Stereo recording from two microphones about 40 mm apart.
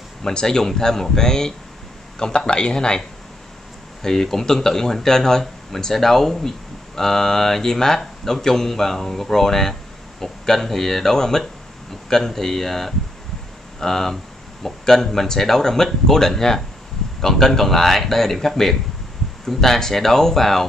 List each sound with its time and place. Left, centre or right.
0.2 s speech: centre
4.0 s speech: centre